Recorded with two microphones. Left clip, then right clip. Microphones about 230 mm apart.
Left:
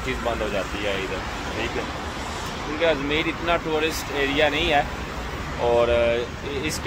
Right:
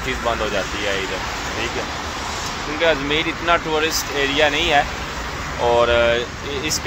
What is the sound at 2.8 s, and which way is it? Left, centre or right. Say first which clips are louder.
Speech: right 4 dB; centre.